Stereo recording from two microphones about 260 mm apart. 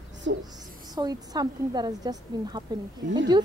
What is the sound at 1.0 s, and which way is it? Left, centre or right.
A woman's voice, centre.